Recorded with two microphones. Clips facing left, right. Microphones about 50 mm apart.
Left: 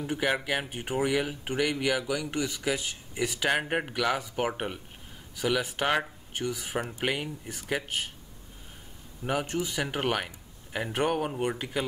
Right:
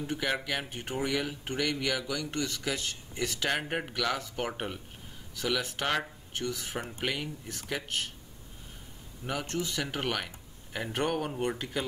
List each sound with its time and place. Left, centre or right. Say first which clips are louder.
0.0 s speech: left 3 dB; centre
9.2 s speech: left 4 dB; centre